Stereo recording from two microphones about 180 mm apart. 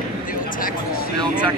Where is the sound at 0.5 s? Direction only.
50° left (ahead or behind).